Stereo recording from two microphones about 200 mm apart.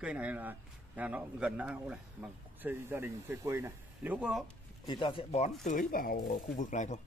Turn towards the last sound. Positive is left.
turn(degrees=35)  # may be behind; listen again after turning